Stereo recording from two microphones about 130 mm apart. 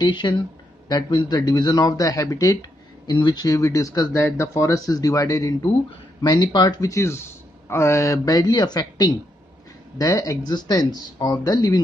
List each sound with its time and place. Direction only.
0.0 s speech: 35° left (ahead or behind)